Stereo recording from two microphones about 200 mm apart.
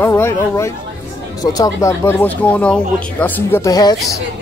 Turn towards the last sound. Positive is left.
turn(degrees=20)  # may be behind; listen again after turning